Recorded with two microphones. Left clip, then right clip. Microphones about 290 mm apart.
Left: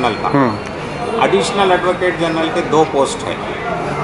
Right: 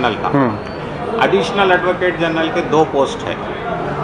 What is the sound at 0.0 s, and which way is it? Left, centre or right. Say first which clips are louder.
Speech: left 1 dB; centre.